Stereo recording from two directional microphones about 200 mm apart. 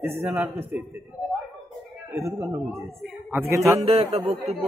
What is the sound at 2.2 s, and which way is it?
A man's voice, 15° right (ahead or behind).